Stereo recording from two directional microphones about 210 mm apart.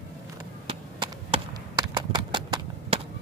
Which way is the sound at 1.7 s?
20° right (ahead or behind).